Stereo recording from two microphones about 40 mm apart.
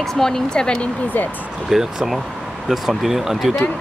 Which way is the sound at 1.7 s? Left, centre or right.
Centre.